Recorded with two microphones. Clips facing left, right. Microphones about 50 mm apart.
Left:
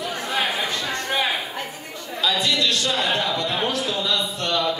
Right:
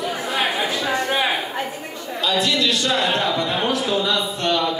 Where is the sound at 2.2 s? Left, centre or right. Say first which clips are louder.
Right 2 dB; centre.